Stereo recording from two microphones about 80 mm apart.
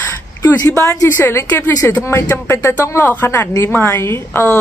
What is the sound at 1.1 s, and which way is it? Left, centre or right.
A woman's voice, left.